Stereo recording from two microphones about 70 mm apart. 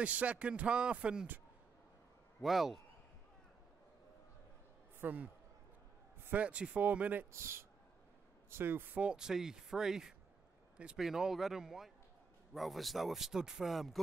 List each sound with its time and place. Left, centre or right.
0.0 s speech: centre
2.4 s speech: centre
5.0 s speech: right
6.3 s speech: centre
7.3 s speech: right
8.9 s speech: centre